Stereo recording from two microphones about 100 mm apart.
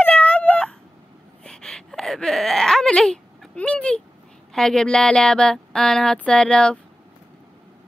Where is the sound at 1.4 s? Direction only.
5° left (ahead or behind).